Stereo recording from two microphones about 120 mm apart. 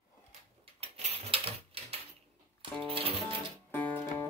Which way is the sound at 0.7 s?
60° right (ahead or behind).